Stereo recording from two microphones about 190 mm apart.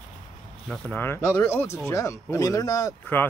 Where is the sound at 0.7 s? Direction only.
10° left (ahead or behind).